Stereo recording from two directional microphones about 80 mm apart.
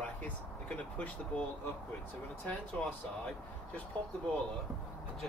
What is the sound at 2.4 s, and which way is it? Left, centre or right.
Speech, centre.